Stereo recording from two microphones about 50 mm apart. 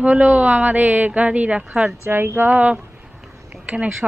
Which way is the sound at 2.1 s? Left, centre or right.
Right.